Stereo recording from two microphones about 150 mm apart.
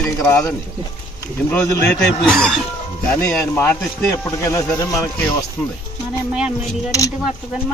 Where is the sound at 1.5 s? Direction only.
15° left (ahead or behind).